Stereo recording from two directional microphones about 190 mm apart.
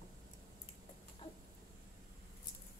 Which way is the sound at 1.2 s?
25° left (ahead or behind).